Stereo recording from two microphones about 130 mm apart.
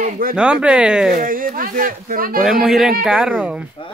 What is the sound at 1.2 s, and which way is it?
Speech, 90° right.